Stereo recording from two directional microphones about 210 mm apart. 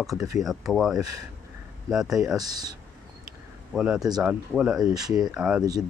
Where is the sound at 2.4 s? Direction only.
20° right (ahead or behind).